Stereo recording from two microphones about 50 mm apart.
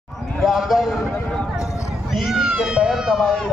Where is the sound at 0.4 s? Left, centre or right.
Centre.